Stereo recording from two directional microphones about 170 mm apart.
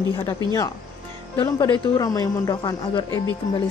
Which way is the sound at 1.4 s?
25° left (ahead or behind).